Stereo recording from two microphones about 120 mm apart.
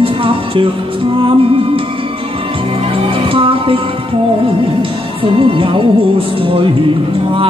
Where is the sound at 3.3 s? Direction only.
50° right (ahead or behind).